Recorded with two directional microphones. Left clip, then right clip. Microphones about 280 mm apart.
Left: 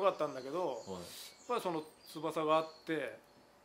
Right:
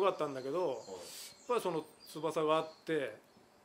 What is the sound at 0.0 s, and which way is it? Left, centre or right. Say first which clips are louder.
Speech: even; right.